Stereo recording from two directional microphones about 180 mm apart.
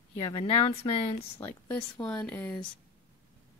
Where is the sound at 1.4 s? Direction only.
10° left (ahead or behind).